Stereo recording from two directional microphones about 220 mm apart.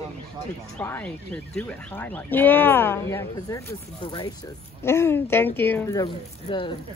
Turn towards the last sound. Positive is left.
turn(degrees=20)  # may be behind; listen again after turning